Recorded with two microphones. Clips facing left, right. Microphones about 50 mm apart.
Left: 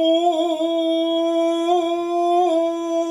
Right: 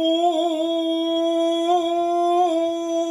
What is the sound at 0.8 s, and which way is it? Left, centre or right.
Humming, left.